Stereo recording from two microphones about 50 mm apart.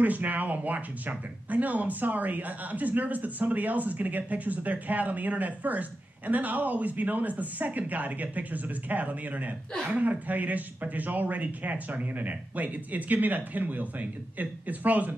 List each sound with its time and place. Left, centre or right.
0.0 s speech: right